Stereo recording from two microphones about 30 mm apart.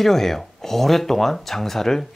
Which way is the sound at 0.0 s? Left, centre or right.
Centre.